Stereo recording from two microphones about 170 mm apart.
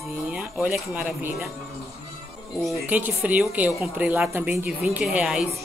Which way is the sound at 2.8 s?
10° right (ahead or behind).